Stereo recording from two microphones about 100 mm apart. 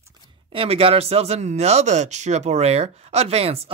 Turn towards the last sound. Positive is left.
turn(degrees=-90)